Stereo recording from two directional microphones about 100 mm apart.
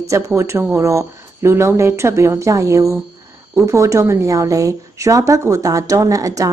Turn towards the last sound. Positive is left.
turn(degrees=-35)  # may be behind; listen again after turning